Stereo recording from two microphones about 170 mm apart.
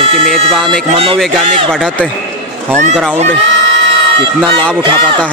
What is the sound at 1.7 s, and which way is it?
Speech, 5° left (ahead or behind).